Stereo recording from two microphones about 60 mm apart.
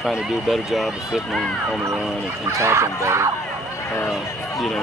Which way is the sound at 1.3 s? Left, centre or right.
Centre.